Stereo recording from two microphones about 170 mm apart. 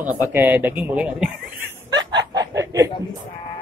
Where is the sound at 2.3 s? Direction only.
20° right (ahead or behind).